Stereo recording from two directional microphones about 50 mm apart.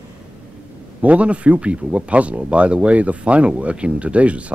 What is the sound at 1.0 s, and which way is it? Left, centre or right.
Speech, right.